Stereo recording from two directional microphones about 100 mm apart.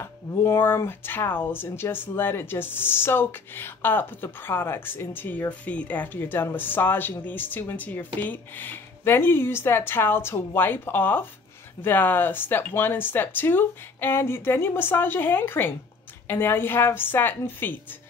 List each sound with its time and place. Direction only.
0.0 s speech: 25° left (ahead or behind)